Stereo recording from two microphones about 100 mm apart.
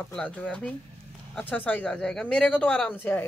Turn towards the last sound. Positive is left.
turn(degrees=20)  # may be behind; listen again after turning